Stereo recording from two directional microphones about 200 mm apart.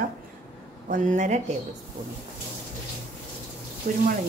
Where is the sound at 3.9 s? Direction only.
45° right (ahead or behind).